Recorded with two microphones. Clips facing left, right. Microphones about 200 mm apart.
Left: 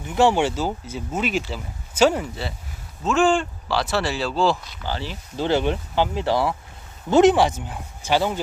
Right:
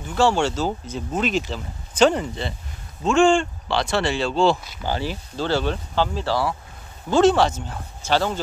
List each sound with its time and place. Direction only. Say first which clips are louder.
0.1 s speech: left 1 dB; 15° left (ahead or behind); by 4.7 s centre (ahead or behind)
4.8 s speech: right 4 dB; 15° right (ahead or behind)
5.3 s speech: left 3 dB; 15° left (ahead or behind)